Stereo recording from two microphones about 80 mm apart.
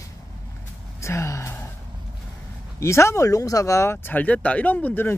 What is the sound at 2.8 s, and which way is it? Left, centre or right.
Speech, left.